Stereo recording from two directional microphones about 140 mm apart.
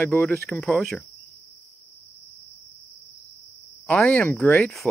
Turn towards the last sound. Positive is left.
turn(degrees=0)  # may be behind; listen again after turning